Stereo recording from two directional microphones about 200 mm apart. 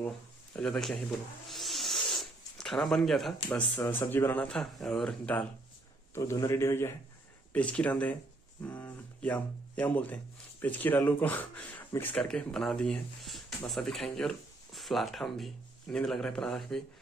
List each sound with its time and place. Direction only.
0.0 s speech: 5° left (ahead or behind)
1.5 s zipper: centre (ahead or behind)
3.4 s speech: 10° left (ahead or behind)